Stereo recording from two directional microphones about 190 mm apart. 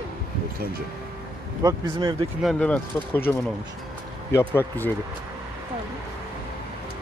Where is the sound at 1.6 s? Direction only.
20° right (ahead or behind).